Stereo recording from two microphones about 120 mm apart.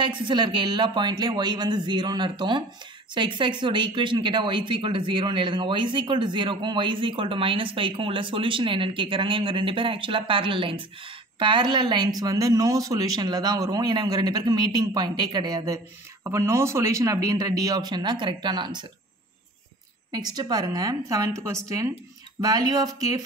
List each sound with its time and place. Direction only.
0.0 s speech: 40° right (ahead or behind)
20.1 s a woman's voice: 35° right (ahead or behind)